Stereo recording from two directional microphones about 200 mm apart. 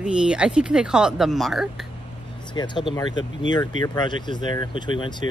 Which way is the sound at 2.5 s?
25° left (ahead or behind).